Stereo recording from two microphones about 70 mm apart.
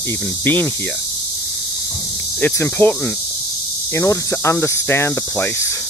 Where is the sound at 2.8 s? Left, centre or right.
Left.